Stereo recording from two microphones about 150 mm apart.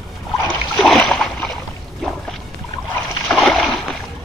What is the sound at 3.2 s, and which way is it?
Splash, centre (ahead or behind).